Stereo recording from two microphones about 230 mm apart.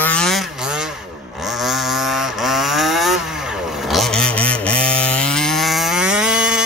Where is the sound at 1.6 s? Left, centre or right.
Centre.